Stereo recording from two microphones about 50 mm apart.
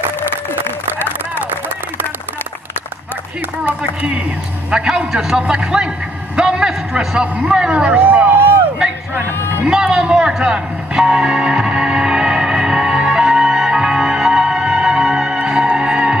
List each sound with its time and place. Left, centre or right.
3.6 s speech: right
4.6 s a man's voice: centre
8.0 s speech: right
9.7 s music: centre